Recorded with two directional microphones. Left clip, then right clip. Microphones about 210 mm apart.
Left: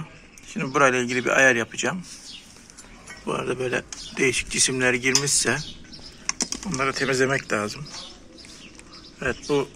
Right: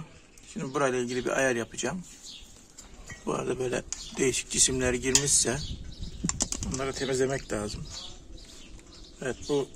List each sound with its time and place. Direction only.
0.6 s speech: 20° right (ahead or behind)
3.3 s speech: 40° right (ahead or behind)
6.2 s typing: 40° right (ahead or behind)
6.8 s speech: 20° right (ahead or behind)
9.2 s speech: 25° right (ahead or behind)